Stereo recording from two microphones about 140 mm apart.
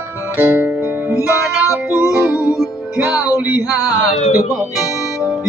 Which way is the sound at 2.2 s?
10° right (ahead or behind).